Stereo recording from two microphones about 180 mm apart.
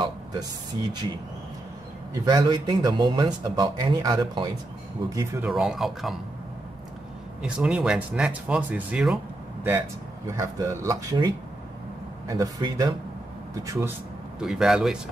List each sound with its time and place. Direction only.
2.1 s a man's voice: 20° right (ahead or behind)
5.5 s speech: centre (ahead or behind)
7.4 s speech: 5° right (ahead or behind)
10.2 s a man's voice: 20° right (ahead or behind)
14.4 s speech: 5° right (ahead or behind)